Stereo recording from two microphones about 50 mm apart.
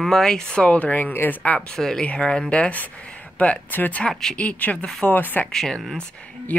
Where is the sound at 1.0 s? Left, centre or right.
Left.